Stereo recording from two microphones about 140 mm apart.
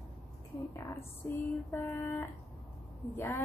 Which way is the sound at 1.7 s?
15° left (ahead or behind).